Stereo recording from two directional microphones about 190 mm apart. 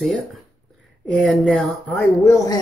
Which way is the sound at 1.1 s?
5° left (ahead or behind).